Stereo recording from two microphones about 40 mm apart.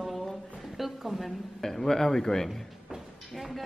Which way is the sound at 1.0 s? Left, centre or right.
Centre.